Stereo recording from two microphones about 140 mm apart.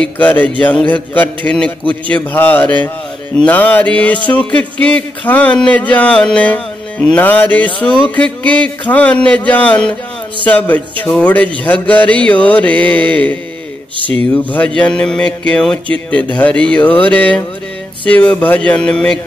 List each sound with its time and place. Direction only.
0.0 s speech: 10° left (ahead or behind)
14.4 s speech: 10° left (ahead or behind)